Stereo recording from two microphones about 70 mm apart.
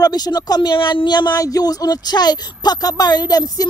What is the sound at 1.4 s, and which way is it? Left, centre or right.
Speech, left.